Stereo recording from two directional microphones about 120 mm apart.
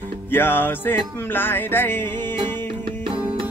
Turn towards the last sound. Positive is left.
turn(degrees=-15)  # may be behind; listen again after turning